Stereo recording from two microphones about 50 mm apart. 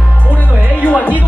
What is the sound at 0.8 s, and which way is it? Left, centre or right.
Music, left.